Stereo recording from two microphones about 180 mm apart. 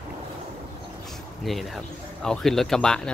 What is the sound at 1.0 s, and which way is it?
Speech, centre (ahead or behind).